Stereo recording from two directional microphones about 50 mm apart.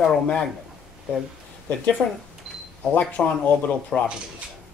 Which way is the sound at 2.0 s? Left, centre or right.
Centre.